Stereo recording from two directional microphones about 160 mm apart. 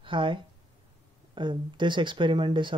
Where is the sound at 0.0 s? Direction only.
30° right (ahead or behind).